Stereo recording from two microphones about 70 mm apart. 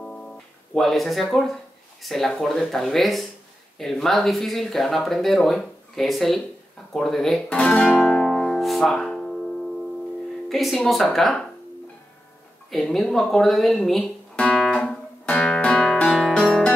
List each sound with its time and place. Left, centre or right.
0.0 s guitar: centre
0.7 s speech: centre
7.4 s speech: centre
7.8 s music: centre
10.5 s speech: centre
12.7 s speech: centre
14.3 s music: centre
16.3 s music: centre